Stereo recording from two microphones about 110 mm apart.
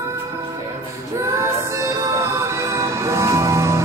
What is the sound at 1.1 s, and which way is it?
Music, 25° right (ahead or behind).